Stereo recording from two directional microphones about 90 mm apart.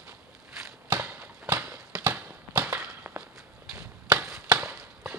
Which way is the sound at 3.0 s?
10° right (ahead or behind).